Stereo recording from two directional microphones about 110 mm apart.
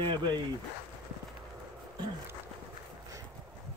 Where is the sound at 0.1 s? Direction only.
40° right (ahead or behind).